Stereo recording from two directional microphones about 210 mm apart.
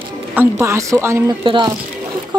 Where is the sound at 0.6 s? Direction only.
15° right (ahead or behind).